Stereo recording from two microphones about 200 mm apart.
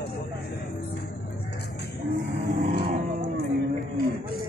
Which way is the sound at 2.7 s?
50° right (ahead or behind).